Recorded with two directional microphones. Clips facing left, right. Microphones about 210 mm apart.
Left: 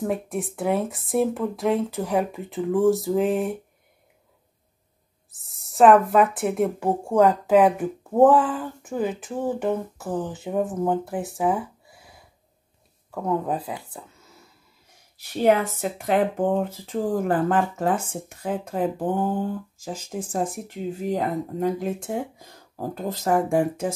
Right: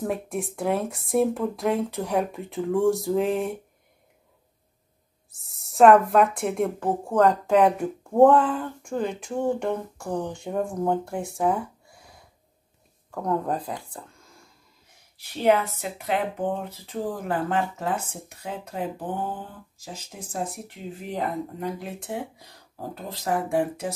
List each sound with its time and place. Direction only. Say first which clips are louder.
0.0 s speech: left 2 dB; centre (ahead or behind)
5.3 s speech: even; centre (ahead or behind)
15.4 s speech: left 2 dB; 45° left (ahead or behind)